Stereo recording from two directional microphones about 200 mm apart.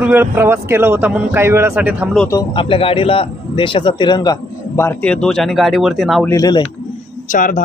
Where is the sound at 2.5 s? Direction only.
25° left (ahead or behind); by 6.2 s centre (ahead or behind).